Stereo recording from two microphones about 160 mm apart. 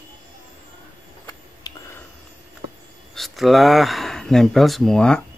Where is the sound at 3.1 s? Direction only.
Centre (ahead or behind).